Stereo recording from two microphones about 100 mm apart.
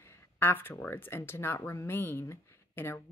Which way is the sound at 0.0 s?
25° left (ahead or behind).